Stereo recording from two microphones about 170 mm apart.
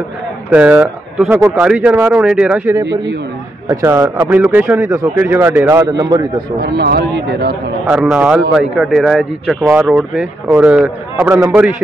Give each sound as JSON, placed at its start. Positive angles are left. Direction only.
{"t": 0.5, "sound": "a man's voice", "side_deg": -10}
{"t": 6.6, "sound": "a man's voice", "side_deg": -75}
{"t": 7.8, "sound": "a man's voice", "side_deg": -5}
{"t": 11.1, "sound": "a man's voice", "side_deg": -20}